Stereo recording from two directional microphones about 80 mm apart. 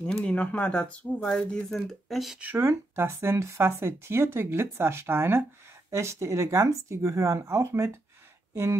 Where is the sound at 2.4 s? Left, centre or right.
Right.